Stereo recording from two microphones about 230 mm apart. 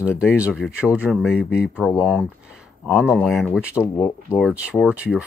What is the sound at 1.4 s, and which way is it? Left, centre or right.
Speech, left.